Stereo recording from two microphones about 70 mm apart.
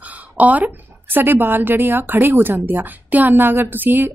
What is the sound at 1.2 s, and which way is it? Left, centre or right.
A woman's voice, right.